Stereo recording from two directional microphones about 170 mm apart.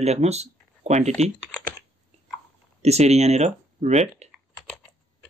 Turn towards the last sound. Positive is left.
turn(degrees=-40)  # may be behind; listen again after turning